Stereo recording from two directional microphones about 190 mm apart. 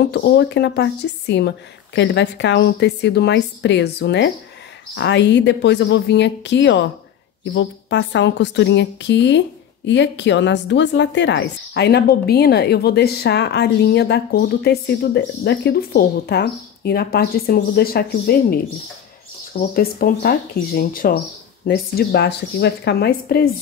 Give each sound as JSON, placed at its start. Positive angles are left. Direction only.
{"t": 0.0, "sound": "a woman's voice", "side_deg": 65}
{"t": 19.6, "sound": "a woman's voice", "side_deg": 55}